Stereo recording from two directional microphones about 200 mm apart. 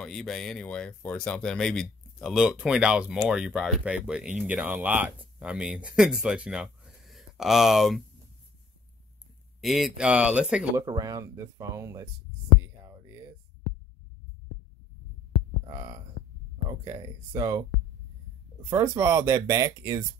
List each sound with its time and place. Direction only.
0.0 s speech: centre (ahead or behind)
9.6 s speech: centre (ahead or behind)
10.9 s speech: 20° right (ahead or behind)
12.6 s heart sounds: 15° right (ahead or behind)
15.6 s heart sounds: 25° right (ahead or behind)
16.6 s speech: 20° right (ahead or behind)
18.7 s speech: 15° right (ahead or behind)